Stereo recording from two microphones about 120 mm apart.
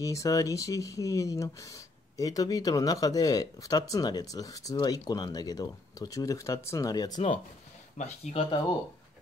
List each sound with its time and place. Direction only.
0.0 s speech: 25° left (ahead or behind)
8.0 s speech: 65° left (ahead or behind)